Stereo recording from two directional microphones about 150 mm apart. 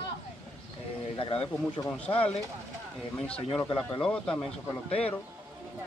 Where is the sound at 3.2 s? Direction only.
5° left (ahead or behind).